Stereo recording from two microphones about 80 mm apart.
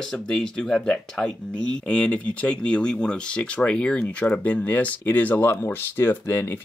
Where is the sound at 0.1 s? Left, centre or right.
Centre.